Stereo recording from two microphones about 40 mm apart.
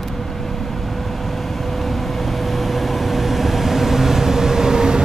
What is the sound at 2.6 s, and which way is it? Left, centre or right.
Vehicle, centre.